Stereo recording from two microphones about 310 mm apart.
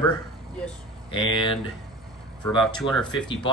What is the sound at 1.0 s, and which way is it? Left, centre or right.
Speech, centre.